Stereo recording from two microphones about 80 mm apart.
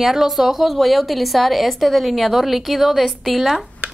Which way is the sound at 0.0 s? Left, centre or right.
Centre.